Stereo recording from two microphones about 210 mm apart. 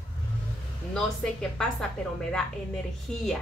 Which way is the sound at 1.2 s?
5° left (ahead or behind).